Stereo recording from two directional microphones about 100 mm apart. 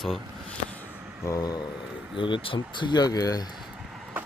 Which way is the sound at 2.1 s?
55° left (ahead or behind).